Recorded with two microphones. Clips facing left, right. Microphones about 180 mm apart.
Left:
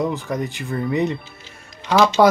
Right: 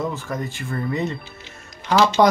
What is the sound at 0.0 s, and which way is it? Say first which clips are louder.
Speech: left 4 dB; 15° left (ahead or behind).